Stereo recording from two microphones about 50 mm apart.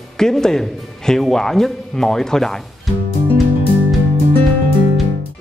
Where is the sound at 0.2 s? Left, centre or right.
Centre.